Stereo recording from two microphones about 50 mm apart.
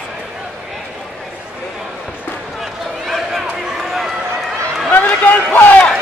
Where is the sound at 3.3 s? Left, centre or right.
Centre.